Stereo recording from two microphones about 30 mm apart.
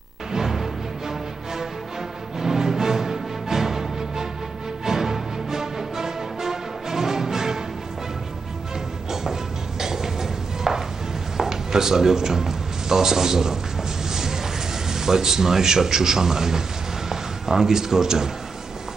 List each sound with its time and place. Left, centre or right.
0.3 s music: centre
9.1 s a sound: centre
17.1 s speech: centre